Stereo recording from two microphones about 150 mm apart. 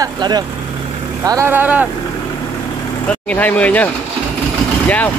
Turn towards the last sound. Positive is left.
turn(degrees=10)  # may be behind; listen again after turning